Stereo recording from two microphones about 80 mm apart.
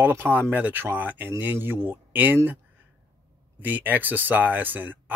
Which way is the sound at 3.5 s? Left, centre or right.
Right.